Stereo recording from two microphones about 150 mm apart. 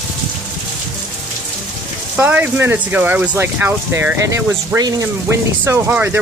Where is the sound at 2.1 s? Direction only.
10° right (ahead or behind).